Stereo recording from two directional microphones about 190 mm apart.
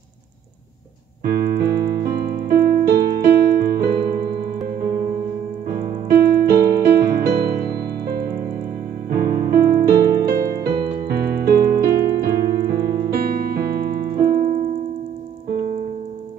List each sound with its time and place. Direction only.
1.2 s keyboard: 55° right (ahead or behind)
5.7 s keyboard: 55° right (ahead or behind)
6.8 s music: 60° right (ahead or behind)
12.2 s keyboard: 55° right (ahead or behind)